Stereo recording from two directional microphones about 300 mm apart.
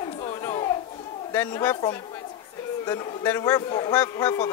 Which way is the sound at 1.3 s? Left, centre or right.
Centre.